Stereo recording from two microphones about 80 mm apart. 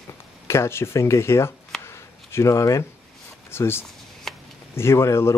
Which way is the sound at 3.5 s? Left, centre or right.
Left.